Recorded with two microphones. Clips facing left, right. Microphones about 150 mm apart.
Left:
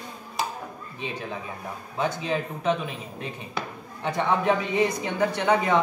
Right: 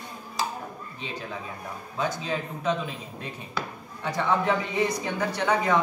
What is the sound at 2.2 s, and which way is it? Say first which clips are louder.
Speech: left 3 dB; 20° left (ahead or behind).